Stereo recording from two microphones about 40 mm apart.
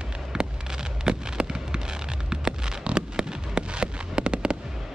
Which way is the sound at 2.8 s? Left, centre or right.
Right.